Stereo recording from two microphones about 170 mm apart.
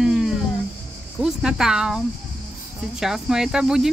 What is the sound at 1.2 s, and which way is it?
Speech, 5° right (ahead or behind).